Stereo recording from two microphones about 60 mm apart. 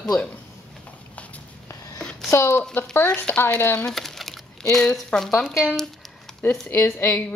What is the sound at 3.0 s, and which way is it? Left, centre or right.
Speech, left.